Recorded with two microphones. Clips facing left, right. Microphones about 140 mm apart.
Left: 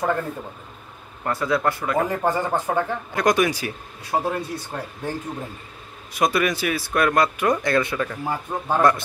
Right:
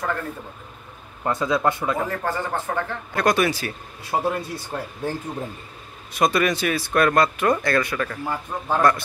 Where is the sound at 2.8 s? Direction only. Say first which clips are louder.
Left 1 dB; 15° left (ahead or behind).